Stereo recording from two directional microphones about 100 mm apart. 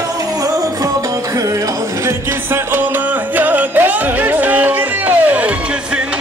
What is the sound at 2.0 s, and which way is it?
Music, 20° right (ahead or behind).